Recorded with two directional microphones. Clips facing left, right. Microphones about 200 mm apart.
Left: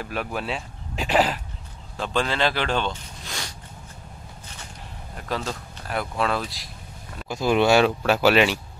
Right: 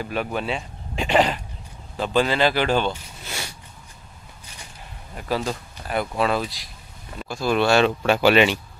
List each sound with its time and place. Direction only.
0.0 s speech: centre (ahead or behind)
5.1 s speech: 5° right (ahead or behind)
7.2 s speech: 15° left (ahead or behind)
8.0 s speech: centre (ahead or behind)